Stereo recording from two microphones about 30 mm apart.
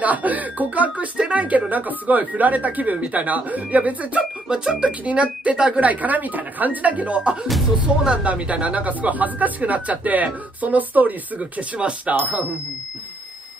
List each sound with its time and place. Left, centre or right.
0.0 s speech: right
1.1 s speech: right
1.7 s speech: right
4.5 s speech: right
4.8 s speech: right
5.8 s speech: right
8.0 s speech: right
8.4 s speech: right
11.3 s speech: right